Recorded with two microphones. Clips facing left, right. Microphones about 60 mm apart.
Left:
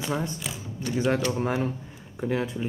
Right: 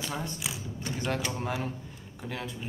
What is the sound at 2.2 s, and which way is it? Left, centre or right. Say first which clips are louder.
Speech: left 10 dB; left.